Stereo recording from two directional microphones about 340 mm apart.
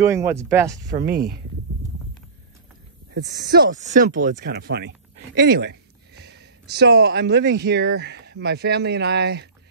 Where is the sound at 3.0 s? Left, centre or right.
Right.